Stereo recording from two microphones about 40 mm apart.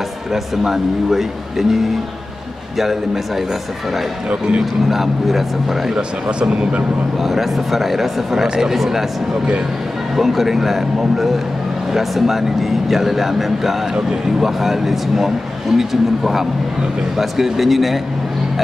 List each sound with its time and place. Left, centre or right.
0.3 s a man's voice: centre
4.3 s speech: right
4.8 s speech: centre
5.9 s speech: right
7.2 s speech: centre
10.1 s a man's voice: centre